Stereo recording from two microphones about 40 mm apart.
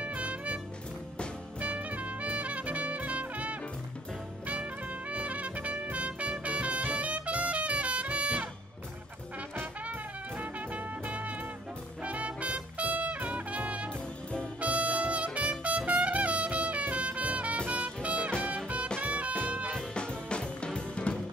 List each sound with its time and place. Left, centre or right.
0.0 s music: right
1.6 s music: right
10.3 s music: right
19.9 s music: left